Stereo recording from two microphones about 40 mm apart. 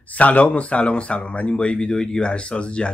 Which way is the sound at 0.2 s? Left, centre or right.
Left.